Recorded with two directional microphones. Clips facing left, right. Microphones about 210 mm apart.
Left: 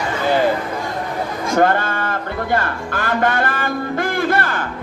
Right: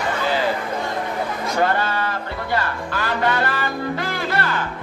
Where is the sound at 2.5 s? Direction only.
50° left (ahead or behind).